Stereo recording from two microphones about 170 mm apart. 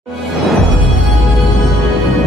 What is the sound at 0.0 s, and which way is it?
Music, centre (ahead or behind).